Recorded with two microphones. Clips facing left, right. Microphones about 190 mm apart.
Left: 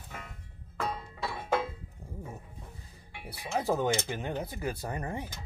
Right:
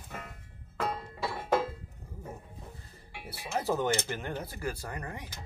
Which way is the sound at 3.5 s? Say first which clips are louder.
Left 1 dB; 15° left (ahead or behind).